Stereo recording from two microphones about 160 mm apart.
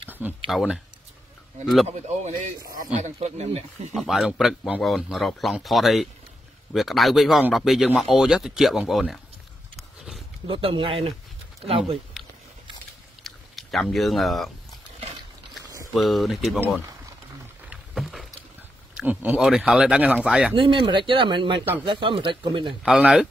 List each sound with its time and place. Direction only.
0.1 s a sound: 10° right (ahead or behind)
0.5 s speech: centre (ahead or behind)
1.9 s speech: 45° right (ahead or behind)
3.9 s speech: centre (ahead or behind)
9.8 s a sound: centre (ahead or behind)
10.4 s speech: 35° right (ahead or behind)
13.2 s chewing: centre (ahead or behind)
15.6 s a sound: 20° right (ahead or behind)
15.9 s speech: centre (ahead or behind)
17.6 s rowboat: centre (ahead or behind)
18.9 s speech: 10° right (ahead or behind)
20.5 s speech: 30° right (ahead or behind)
22.8 s speech: 5° right (ahead or behind)